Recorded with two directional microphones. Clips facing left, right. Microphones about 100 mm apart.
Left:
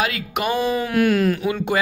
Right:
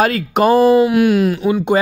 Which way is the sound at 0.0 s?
40° right (ahead or behind).